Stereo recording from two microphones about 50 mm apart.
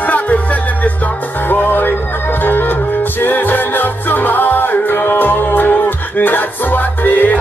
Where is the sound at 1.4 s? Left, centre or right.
Left.